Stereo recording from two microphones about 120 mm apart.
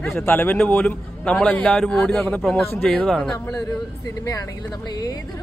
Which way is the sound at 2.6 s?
20° left (ahead or behind).